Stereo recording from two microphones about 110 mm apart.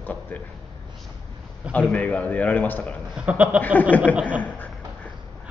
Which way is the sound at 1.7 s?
15° left (ahead or behind).